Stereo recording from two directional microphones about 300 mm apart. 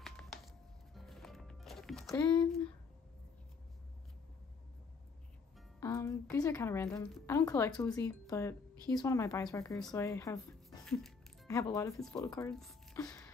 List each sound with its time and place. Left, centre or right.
0.0 s a sound: centre
0.9 s music: centre
5.8 s speech: centre